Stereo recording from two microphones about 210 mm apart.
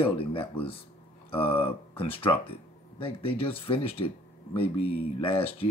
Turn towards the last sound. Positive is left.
turn(degrees=25)  # may be behind; listen again after turning